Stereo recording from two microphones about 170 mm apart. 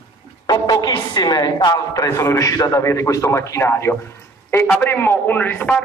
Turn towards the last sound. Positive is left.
turn(degrees=10)  # may be behind; listen again after turning